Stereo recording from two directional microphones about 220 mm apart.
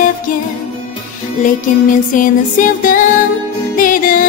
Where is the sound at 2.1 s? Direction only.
35° left (ahead or behind).